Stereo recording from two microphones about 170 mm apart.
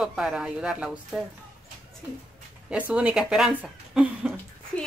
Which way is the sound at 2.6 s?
5° right (ahead or behind).